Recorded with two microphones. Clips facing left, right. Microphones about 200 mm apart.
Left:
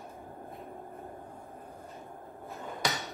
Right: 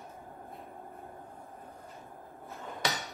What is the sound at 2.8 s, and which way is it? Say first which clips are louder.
Hammer: left 1 dB; centre (ahead or behind).